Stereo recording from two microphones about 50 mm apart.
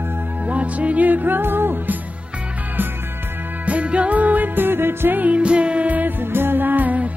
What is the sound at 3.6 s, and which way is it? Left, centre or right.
Music, right.